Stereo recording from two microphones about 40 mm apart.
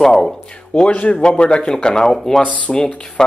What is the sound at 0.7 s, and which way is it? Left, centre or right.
Speech, left.